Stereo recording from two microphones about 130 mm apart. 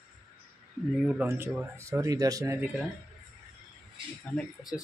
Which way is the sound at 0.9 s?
5° right (ahead or behind).